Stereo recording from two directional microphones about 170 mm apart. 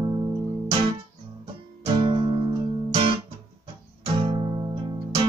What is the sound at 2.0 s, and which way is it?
Music, 30° right (ahead or behind).